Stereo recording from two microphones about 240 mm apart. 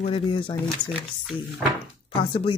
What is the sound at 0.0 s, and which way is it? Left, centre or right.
Speech, left.